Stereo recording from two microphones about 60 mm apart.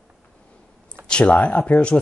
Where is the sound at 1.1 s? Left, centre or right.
Centre.